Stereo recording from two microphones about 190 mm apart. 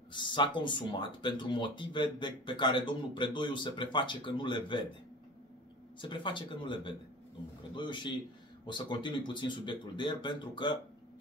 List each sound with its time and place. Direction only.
0.1 s speech: 25° left (ahead or behind)
5.9 s speech: 25° left (ahead or behind)